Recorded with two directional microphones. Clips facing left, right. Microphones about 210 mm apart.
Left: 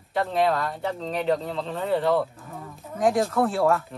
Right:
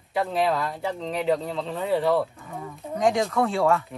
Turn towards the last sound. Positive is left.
turn(degrees=0)  # may be behind; listen again after turning